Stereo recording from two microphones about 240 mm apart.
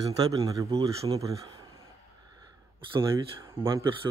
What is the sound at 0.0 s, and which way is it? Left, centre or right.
Speech, centre.